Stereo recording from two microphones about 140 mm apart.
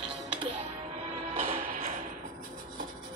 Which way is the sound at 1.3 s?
45° right (ahead or behind).